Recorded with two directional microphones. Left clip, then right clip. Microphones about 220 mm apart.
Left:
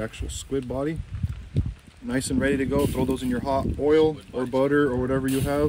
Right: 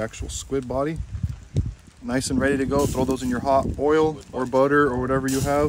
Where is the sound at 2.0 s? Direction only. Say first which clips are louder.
Right 2 dB; 20° right (ahead or behind).